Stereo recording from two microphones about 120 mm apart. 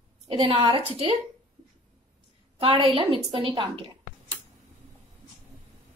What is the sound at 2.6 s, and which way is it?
A woman's voice, 50° right (ahead or behind).